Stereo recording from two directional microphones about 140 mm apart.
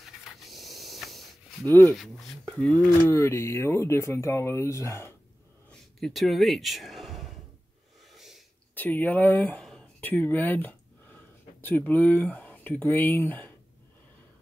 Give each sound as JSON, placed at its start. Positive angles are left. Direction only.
{"t": 0.0, "sound": "a sound", "side_deg": 0}
{"t": 1.7, "sound": "speech", "side_deg": 15}
{"t": 2.0, "sound": "speech", "side_deg": 0}
{"t": 3.1, "sound": "speech", "side_deg": 20}
{"t": 5.7, "sound": "a sound", "side_deg": 0}
{"t": 8.7, "sound": "speech", "side_deg": 10}